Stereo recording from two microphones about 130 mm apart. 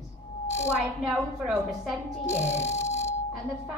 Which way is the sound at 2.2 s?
20° left (ahead or behind).